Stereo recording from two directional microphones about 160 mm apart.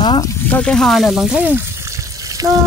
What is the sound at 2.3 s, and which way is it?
Frying, 20° right (ahead or behind).